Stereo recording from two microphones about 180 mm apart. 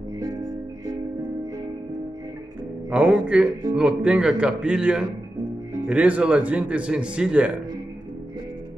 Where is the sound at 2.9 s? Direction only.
5° right (ahead or behind).